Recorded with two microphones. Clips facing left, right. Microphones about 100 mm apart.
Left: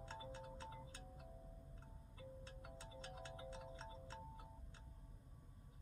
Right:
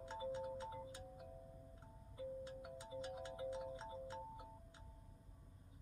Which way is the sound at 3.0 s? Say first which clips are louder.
Right 7 dB; 15° right (ahead or behind).